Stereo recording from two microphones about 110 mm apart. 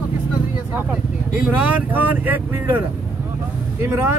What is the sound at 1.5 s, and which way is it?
Speech, 15° right (ahead or behind).